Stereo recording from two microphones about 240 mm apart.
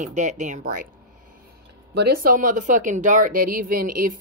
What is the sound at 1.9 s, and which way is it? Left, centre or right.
Speech, right.